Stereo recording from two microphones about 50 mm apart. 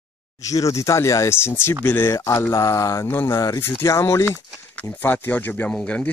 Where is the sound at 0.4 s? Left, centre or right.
Left.